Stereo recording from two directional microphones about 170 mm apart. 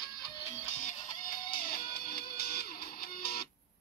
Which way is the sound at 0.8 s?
50° left (ahead or behind).